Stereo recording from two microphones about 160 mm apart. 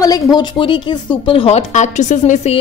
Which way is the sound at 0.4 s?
30° left (ahead or behind).